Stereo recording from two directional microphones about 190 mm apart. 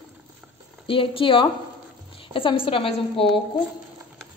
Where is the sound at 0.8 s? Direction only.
30° left (ahead or behind).